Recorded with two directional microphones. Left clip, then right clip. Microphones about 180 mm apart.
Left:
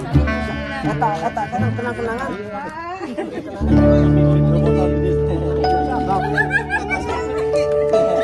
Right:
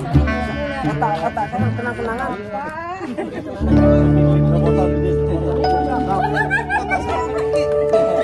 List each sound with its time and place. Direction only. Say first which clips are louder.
0.8 s music: left 1 dB; centre (ahead or behind)
3.6 s music: even; centre (ahead or behind)
5.9 s music: even; 20° left (ahead or behind)
7.3 s music: left 1 dB; centre (ahead or behind)